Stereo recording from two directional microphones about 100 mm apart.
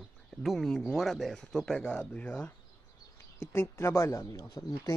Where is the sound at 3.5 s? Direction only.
25° left (ahead or behind).